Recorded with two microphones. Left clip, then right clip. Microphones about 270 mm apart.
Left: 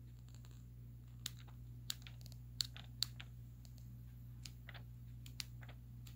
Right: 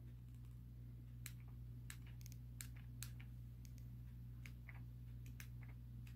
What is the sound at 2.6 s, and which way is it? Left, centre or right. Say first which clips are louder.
Chewing: left 18 dB; centre.